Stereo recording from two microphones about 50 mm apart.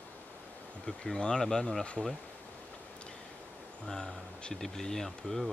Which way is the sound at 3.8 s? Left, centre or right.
Centre.